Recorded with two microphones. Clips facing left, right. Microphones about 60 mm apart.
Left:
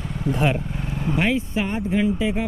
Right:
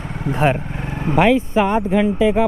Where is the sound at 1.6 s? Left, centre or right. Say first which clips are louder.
Right 6 dB; right.